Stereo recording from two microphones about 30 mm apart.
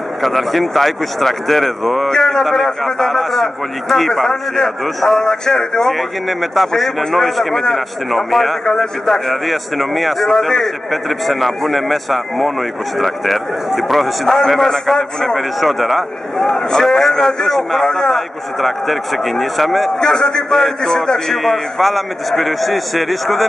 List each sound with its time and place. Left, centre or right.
0.2 s a man's voice: centre
2.0 s a man's voice: centre
5.9 s a man's voice: centre
7.0 s a man's voice: centre
7.2 s a man's voice: centre
14.2 s a man's voice: centre
15.3 s a man's voice: centre
16.4 s a man's voice: centre
18.1 s a man's voice: centre
20.0 s a man's voice: left
21.3 s a man's voice: centre